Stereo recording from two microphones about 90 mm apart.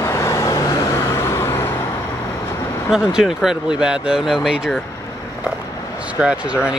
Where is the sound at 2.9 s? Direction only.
5° right (ahead or behind).